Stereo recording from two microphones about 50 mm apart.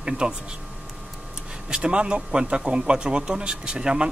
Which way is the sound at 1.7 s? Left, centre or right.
Centre.